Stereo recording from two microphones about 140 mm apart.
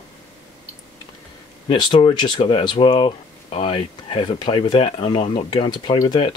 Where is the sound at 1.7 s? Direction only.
35° left (ahead or behind).